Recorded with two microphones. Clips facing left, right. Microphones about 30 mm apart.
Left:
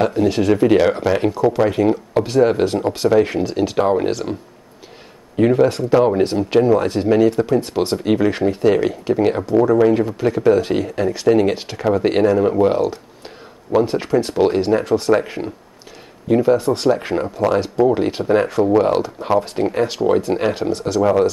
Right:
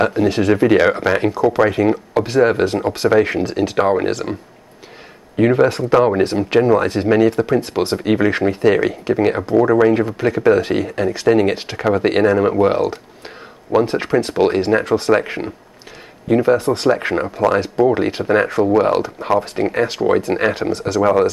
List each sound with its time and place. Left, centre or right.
0.0 s speech: centre
3.7 s speech: right
5.5 s speech: right; by 9.5 s centre
9.5 s speech: right; by 19.1 s centre
19.4 s speech: right